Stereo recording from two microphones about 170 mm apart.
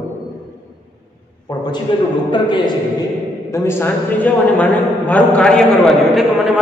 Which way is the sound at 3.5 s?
15° left (ahead or behind).